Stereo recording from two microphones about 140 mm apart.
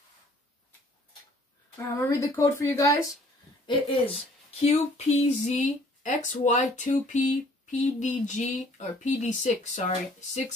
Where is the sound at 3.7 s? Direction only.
40° left (ahead or behind).